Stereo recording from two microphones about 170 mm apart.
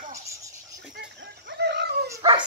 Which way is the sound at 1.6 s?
75° right (ahead or behind).